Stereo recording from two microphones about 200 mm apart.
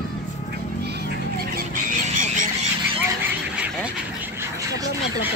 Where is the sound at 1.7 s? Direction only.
40° right (ahead or behind).